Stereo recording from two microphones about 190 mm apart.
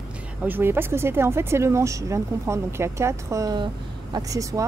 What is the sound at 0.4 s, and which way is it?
Speech, 10° right (ahead or behind).